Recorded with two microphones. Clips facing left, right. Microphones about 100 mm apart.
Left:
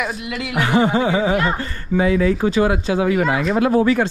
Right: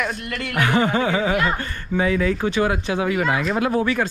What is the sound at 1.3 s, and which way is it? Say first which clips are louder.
Speech: left 2 dB; 35° left (ahead or behind).